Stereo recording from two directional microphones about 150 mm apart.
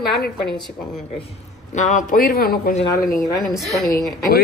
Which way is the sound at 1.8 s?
55° left (ahead or behind).